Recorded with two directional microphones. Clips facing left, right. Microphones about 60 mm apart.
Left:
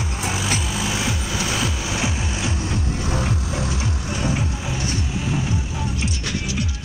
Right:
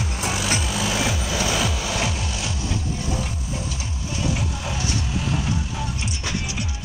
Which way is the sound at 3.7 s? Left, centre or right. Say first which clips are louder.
Left 5 dB; left.